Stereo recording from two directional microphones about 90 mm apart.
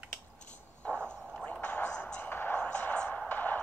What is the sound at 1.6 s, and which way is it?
Music, 20° left (ahead or behind).